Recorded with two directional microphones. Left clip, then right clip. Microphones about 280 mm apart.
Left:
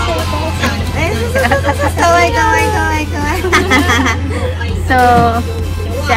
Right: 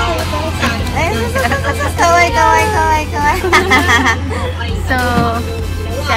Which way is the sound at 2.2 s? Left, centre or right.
Centre.